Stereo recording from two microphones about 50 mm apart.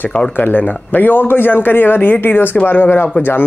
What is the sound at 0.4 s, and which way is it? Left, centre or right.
A man's voice, left.